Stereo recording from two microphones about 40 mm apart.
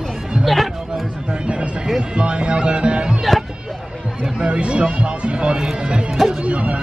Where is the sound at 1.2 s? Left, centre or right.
Right.